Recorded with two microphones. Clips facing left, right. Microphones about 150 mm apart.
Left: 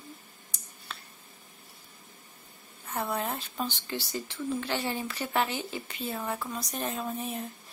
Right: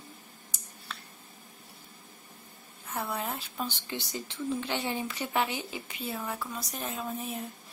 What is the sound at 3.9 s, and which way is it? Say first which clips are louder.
A woman's voice: left 2 dB; 20° right (ahead or behind).